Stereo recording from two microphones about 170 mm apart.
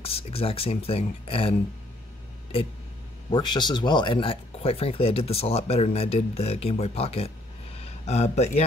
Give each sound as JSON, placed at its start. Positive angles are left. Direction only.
{"t": 0.0, "sound": "speech", "side_deg": 35}
{"t": 3.3, "sound": "speech", "side_deg": 25}